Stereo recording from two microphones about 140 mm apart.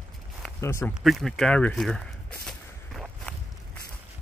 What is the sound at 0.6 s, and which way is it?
Speech, 20° left (ahead or behind).